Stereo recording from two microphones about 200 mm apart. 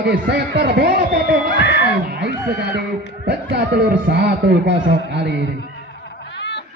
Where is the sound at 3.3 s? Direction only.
55° right (ahead or behind).